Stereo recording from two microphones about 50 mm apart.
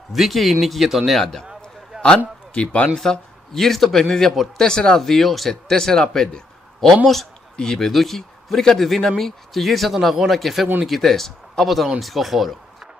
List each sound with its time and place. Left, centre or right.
0.1 s a man's voice: centre
2.0 s a man's voice: left
3.0 s a man's voice: centre
7.9 s a man's voice: centre